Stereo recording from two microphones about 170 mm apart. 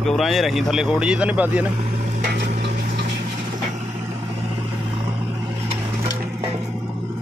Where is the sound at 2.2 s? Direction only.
80° right.